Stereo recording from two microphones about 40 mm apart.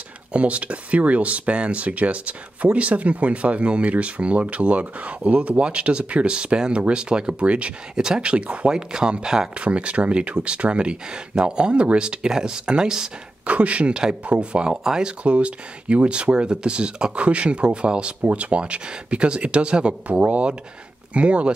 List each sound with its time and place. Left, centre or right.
0.3 s speech: right
7.9 s speech: centre
9.6 s speech: right
13.5 s speech: right